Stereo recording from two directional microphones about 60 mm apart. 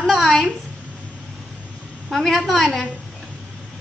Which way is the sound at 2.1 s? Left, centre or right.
Centre.